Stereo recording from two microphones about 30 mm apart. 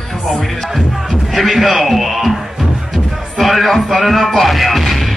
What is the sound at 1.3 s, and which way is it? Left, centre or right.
Speech, centre.